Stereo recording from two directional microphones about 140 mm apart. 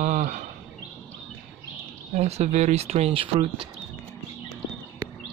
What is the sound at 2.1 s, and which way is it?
Speech, 50° right (ahead or behind).